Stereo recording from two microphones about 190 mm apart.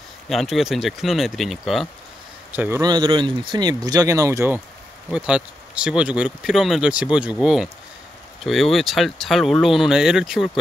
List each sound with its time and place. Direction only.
0.3 s speech: centre (ahead or behind)
2.8 s speech: 20° right (ahead or behind); by 10.6 s centre (ahead or behind)